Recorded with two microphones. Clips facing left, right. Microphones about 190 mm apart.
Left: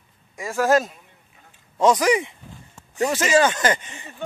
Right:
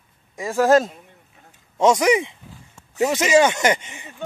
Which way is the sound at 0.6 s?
25° right (ahead or behind).